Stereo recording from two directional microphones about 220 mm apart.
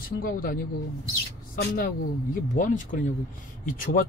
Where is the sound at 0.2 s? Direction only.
40° left (ahead or behind).